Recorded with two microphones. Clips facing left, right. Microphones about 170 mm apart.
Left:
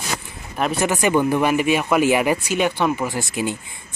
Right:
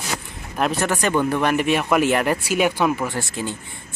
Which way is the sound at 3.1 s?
15° left (ahead or behind).